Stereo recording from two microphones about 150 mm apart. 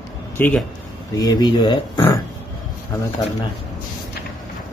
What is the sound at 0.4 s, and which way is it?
Speech, 10° left (ahead or behind).